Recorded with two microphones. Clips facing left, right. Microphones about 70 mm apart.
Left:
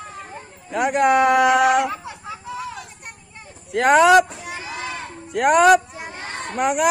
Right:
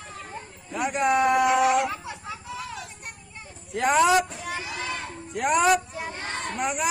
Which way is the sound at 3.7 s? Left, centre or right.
Left.